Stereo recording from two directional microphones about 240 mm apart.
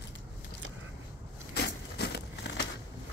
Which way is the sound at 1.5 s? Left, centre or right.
Left.